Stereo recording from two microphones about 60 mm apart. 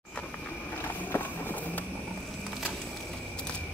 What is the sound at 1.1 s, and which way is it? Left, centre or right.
Run, left.